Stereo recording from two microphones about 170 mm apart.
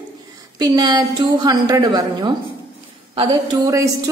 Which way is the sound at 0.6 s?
25° right (ahead or behind).